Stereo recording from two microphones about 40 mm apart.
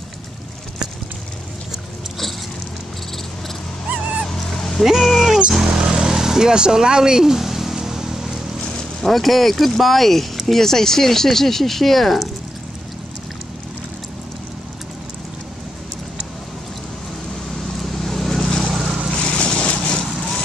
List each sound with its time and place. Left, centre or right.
3.9 s dog: right
4.6 s a sound: centre
4.8 s a sound: centre
5.7 s vehicle: right
9.0 s speech: centre
17.9 s vehicle: centre
19.1 s vehicle: left